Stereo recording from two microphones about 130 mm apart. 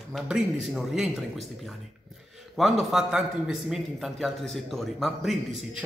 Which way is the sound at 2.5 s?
Centre (ahead or behind).